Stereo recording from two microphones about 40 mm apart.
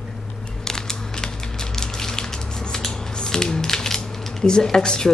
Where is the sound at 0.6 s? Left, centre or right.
Centre.